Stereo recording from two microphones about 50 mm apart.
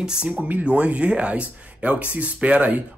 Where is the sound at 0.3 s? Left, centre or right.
Right.